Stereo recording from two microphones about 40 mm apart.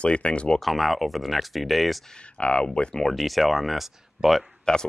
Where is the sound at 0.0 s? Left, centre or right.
Left.